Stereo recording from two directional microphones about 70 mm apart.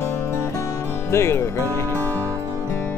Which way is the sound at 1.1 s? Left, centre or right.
Left.